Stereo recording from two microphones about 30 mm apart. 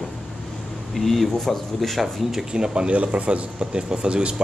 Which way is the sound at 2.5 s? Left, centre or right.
Right.